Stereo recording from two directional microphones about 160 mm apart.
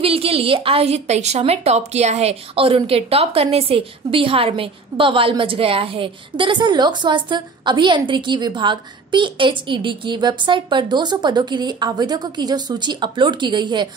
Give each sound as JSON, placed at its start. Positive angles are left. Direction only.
{"t": 0.0, "sound": "a woman's voice", "side_deg": -35}